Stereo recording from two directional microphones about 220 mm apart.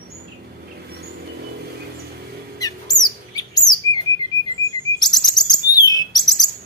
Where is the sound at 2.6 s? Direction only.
15° left (ahead or behind).